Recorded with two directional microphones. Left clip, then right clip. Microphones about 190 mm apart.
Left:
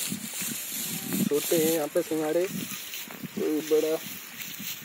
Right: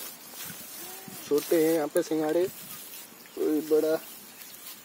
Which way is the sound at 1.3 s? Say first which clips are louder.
Right 2 dB; 10° right (ahead or behind).